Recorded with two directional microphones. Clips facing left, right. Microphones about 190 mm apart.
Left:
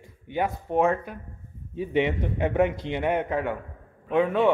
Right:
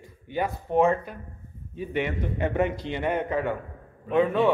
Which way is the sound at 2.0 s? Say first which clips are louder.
Left 4 dB; 25° left (ahead or behind).